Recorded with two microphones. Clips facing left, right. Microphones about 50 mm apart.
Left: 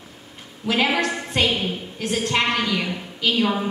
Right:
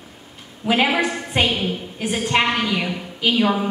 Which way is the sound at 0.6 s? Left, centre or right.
Centre.